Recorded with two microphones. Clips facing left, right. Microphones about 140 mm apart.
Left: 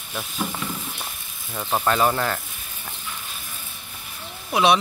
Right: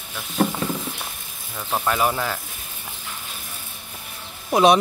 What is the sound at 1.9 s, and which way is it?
Speech, 10° right (ahead or behind).